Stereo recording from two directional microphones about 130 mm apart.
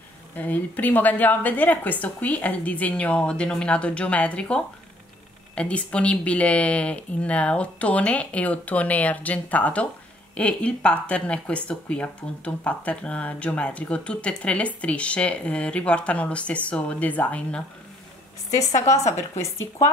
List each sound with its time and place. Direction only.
0.4 s speech: 10° left (ahead or behind)
18.5 s speech: 25° left (ahead or behind)
18.9 s a woman's voice: 60° left (ahead or behind)
19.3 s speech: 20° left (ahead or behind)